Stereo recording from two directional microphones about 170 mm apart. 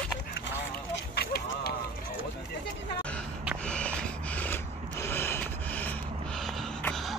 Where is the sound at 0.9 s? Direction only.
70° left (ahead or behind).